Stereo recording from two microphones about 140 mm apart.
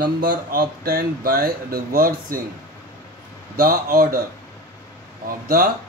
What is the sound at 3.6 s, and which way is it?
Speech, 90° right.